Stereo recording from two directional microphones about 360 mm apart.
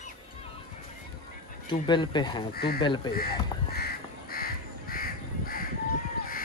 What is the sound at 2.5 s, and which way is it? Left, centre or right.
Speech, left.